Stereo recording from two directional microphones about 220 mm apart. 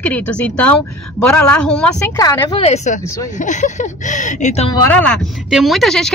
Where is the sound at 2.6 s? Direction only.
30° left (ahead or behind).